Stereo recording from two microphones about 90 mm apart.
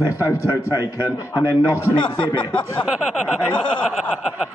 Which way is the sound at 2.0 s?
60° left (ahead or behind).